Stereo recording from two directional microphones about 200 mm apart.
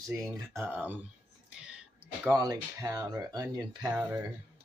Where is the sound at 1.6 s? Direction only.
5° right (ahead or behind).